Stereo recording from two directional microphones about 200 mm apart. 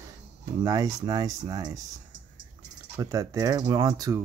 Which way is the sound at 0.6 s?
20° right (ahead or behind).